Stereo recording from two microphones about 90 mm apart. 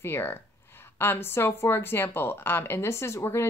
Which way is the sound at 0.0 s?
25° left (ahead or behind).